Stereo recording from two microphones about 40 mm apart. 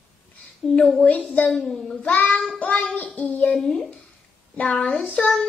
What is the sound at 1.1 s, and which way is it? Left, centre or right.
Child singing, left.